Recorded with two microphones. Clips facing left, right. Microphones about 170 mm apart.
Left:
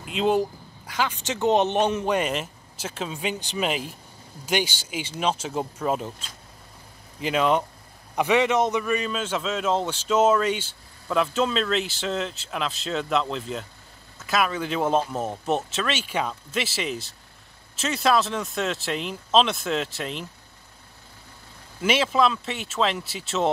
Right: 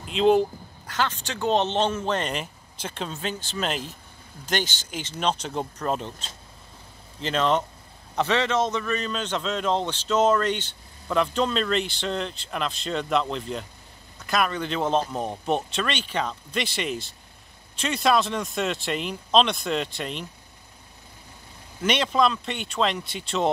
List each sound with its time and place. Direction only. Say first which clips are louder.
0.0 s a man's voice: right 3 dB; 5° left (ahead or behind)
21.8 s a man's voice: left 1 dB; 5° left (ahead or behind)